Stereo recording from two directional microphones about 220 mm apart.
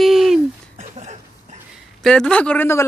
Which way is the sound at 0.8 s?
30° right (ahead or behind).